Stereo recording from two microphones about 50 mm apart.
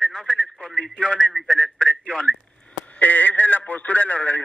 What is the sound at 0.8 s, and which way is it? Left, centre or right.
Radio, centre.